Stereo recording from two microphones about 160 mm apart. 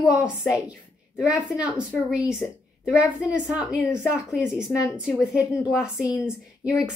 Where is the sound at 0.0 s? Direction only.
5° right (ahead or behind).